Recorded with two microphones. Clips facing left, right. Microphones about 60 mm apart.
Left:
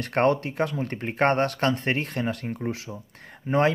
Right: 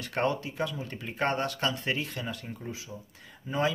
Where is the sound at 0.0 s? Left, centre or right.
Left.